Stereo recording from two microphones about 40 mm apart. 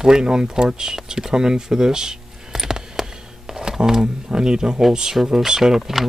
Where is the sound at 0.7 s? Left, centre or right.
Centre.